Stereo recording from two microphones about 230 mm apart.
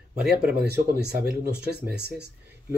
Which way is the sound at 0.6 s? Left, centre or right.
Right.